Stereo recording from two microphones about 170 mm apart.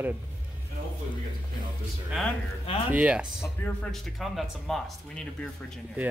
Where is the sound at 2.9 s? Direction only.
10° right (ahead or behind).